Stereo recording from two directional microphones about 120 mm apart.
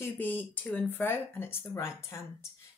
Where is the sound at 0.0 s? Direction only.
15° left (ahead or behind).